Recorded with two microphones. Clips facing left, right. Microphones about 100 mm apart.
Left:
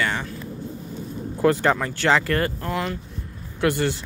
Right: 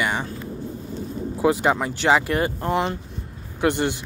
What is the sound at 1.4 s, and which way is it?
A man's voice, 15° right (ahead or behind).